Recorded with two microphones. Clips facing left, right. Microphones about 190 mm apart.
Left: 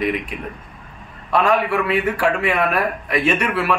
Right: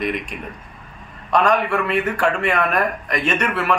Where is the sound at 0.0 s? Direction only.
5° left (ahead or behind).